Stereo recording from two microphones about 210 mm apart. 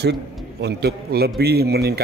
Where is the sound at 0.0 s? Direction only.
50° right (ahead or behind).